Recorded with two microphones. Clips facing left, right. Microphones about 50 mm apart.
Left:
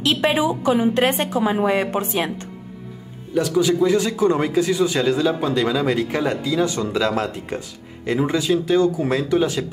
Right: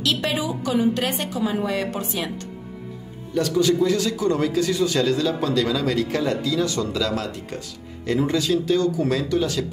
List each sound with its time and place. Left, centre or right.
0.0 s a woman's voice: left
3.3 s speech: centre